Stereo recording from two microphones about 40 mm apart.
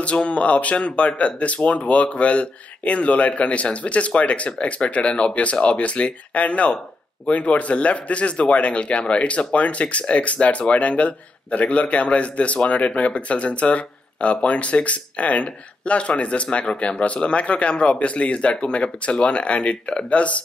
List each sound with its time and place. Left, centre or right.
0.0 s speech: left